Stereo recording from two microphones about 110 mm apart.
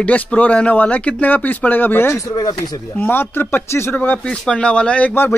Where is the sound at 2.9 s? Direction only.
20° left (ahead or behind).